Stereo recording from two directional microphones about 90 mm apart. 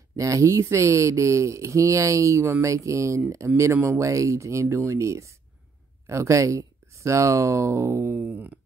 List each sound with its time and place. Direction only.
0.1 s speech: 35° right (ahead or behind)
3.7 s speech: 20° right (ahead or behind)
4.0 s speech: 35° right (ahead or behind)
8.3 s speech: 15° right (ahead or behind)